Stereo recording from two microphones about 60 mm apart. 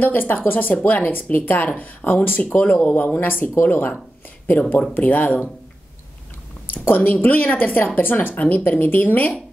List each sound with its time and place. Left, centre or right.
0.0 s speech: left
7.2 s speech: left